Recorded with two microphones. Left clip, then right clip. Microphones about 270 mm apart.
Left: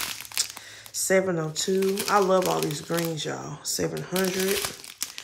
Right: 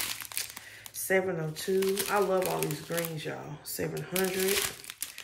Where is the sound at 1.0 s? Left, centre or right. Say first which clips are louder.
Left 5 dB; centre.